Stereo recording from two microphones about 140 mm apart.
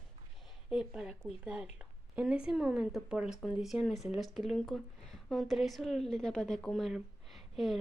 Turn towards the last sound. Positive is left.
turn(degrees=0)  # may be behind; listen again after turning